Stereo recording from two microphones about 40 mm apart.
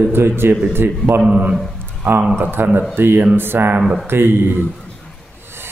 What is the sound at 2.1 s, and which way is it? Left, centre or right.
Speech, right.